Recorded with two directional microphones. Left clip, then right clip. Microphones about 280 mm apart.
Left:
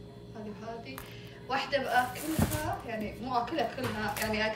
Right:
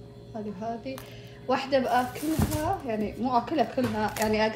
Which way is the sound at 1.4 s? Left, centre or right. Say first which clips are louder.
Right 5 dB; centre.